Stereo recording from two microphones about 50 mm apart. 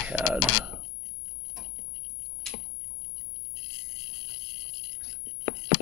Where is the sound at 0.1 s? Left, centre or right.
Right.